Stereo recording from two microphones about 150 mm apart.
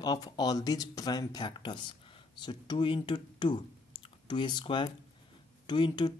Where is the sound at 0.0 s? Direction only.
25° left (ahead or behind).